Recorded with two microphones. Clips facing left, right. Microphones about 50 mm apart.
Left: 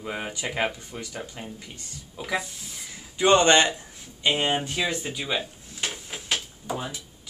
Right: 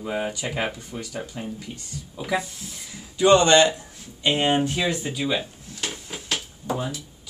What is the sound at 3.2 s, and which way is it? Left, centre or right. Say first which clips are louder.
Speech: right 3 dB; left.